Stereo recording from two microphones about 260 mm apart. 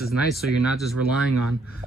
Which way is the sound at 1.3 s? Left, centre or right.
Right.